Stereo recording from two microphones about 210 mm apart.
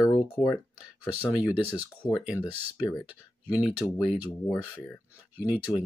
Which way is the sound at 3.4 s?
5° right (ahead or behind).